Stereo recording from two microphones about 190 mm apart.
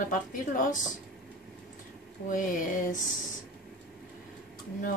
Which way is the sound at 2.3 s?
45° left (ahead or behind).